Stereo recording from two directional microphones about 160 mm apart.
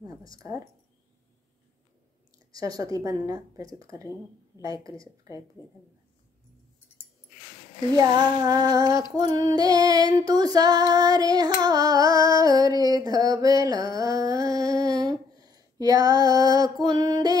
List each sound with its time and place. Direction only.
0.3 s female singing: 20° right (ahead or behind)
2.5 s female singing: 20° right (ahead or behind)
8.0 s female singing: 25° right (ahead or behind)
13.4 s a sound: 20° right (ahead or behind)